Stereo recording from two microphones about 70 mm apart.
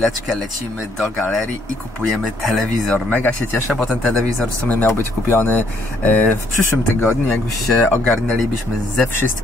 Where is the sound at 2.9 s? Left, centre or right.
Left.